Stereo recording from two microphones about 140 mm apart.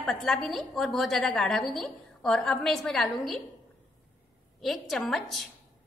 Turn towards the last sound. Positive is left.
turn(degrees=0)  # may be behind; listen again after turning